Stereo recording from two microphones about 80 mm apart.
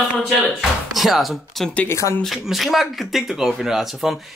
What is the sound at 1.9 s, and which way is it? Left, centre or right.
Speech, left.